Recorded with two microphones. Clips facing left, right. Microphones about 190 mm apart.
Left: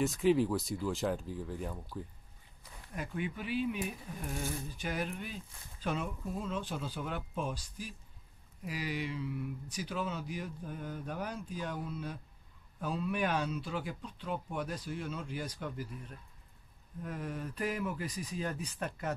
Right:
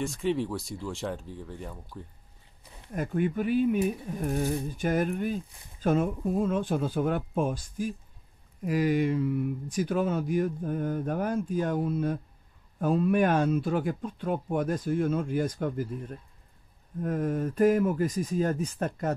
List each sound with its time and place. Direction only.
0.0 s speech: centre (ahead or behind)
2.9 s speech: 45° right (ahead or behind)